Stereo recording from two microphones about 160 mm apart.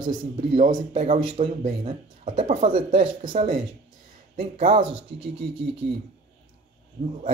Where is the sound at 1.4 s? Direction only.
45° right (ahead or behind).